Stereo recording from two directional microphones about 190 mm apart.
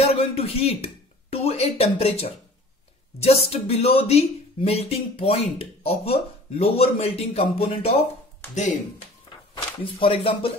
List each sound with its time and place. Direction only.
0.0 s speech: 30° left (ahead or behind)
9.9 s speech: 30° left (ahead or behind)